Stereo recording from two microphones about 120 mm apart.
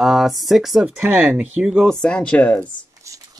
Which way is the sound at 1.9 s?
5° left (ahead or behind).